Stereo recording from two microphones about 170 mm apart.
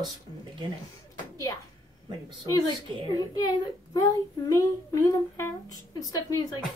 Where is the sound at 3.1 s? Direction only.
20° left (ahead or behind).